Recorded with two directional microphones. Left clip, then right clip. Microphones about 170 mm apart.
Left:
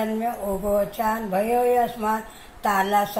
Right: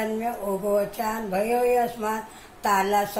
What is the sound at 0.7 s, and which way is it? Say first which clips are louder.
Speech: left 3 dB; 10° right (ahead or behind).